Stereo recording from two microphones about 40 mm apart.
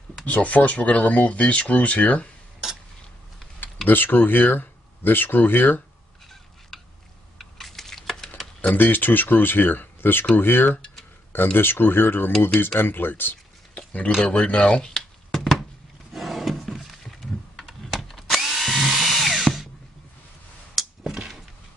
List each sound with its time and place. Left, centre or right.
0.2 s speech: left
3.8 s speech: left
6.7 s a sound: centre
8.7 s speech: left
13.7 s a sound: left
14.4 s speech: left
15.3 s a sound: centre
17.6 s computer keyboard: centre
18.3 s drill: centre